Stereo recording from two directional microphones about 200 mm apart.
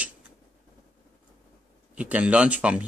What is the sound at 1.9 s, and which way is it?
Speech, 5° right (ahead or behind).